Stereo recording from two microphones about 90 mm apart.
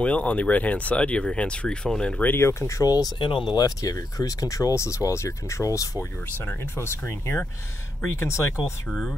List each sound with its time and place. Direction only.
0.0 s speech: 15° left (ahead or behind)
2.3 s speech: 30° left (ahead or behind)
2.8 s speech: 45° left (ahead or behind)
3.2 s speech: 65° left (ahead or behind); by 6.0 s 35° left (ahead or behind)
6.4 s speech: 20° left (ahead or behind)
8.8 s speech: 15° left (ahead or behind)